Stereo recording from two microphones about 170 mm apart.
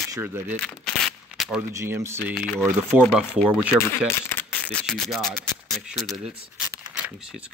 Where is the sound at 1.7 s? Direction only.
15° right (ahead or behind).